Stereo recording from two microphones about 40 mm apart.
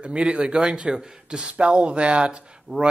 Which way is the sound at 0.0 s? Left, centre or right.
Right.